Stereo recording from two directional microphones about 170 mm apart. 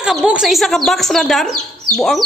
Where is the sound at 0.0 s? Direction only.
5° right (ahead or behind).